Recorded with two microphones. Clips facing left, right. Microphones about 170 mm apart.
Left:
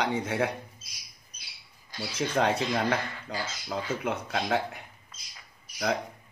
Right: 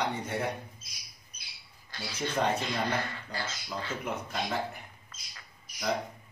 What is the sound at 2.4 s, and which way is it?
Speech, 75° left (ahead or behind).